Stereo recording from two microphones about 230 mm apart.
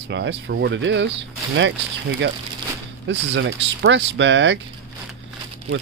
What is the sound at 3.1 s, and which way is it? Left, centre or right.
Speech, right.